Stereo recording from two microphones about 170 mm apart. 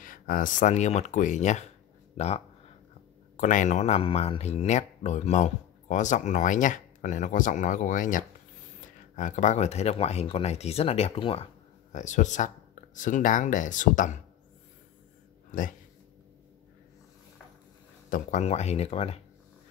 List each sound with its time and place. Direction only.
0.0 s speech: 55° left (ahead or behind); by 11.4 s 35° left (ahead or behind)
11.9 s speech: 45° left (ahead or behind)
15.5 s speech: 50° left (ahead or behind)
18.1 s speech: 45° left (ahead or behind)